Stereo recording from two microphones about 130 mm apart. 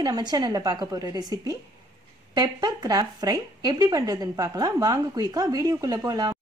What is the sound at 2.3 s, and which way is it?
Speech, 30° right (ahead or behind).